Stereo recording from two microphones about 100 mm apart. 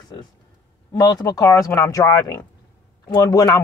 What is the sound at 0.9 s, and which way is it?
A woman's voice, 40° left (ahead or behind).